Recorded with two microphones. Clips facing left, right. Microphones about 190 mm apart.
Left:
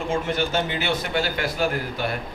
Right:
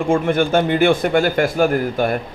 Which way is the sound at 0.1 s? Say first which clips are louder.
Right 9 dB; 55° right (ahead or behind).